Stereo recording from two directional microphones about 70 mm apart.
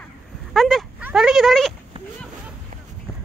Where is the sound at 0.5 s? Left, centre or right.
Centre.